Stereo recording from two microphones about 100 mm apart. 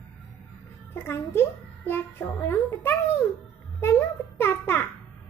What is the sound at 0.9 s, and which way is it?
A child's voice, 25° left (ahead or behind).